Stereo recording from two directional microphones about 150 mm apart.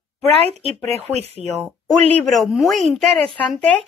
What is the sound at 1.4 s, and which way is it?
Speech, 40° left (ahead or behind).